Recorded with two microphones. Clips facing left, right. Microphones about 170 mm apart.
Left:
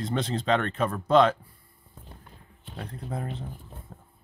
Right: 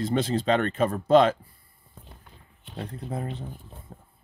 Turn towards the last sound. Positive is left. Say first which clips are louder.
# right 1 dB
turn(degrees=-20)  # may be behind; listen again after turning